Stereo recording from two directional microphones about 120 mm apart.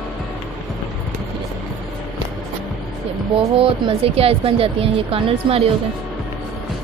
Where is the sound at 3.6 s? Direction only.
50° right (ahead or behind).